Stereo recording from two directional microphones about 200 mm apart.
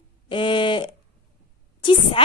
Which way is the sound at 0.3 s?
25° left (ahead or behind).